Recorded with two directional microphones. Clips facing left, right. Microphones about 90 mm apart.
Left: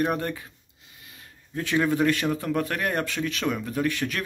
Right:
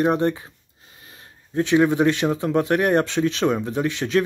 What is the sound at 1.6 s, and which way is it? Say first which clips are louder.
Speech: right 6 dB; 20° right (ahead or behind).